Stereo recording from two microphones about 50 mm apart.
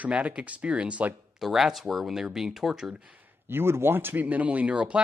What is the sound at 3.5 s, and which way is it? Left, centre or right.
Speech, right.